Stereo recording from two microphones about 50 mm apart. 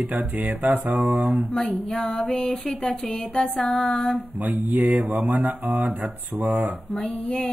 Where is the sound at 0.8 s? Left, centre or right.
Centre.